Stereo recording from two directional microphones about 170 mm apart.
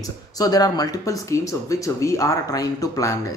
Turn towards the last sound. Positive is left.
turn(degrees=20)  # may be behind; listen again after turning